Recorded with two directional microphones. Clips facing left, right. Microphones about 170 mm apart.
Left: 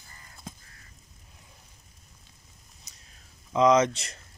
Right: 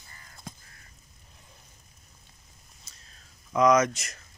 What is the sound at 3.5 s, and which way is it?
Speech, 25° left (ahead or behind).